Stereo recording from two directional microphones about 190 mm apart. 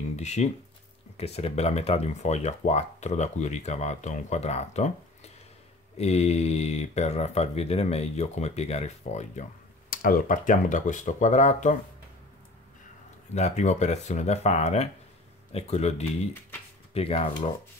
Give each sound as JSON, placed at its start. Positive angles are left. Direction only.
{"t": 0.1, "sound": "speech", "side_deg": 35}
{"t": 13.3, "sound": "speech", "side_deg": 35}